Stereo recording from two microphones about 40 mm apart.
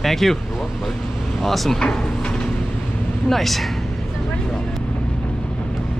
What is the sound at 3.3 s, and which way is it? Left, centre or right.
Speech, centre.